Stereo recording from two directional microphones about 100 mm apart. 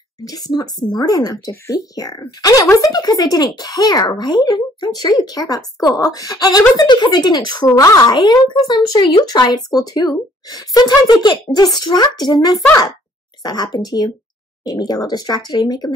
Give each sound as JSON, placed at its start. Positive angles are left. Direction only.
{"t": 0.2, "sound": "a child's voice", "side_deg": 40}